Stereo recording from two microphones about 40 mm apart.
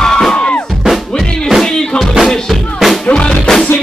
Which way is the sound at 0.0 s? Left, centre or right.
Centre.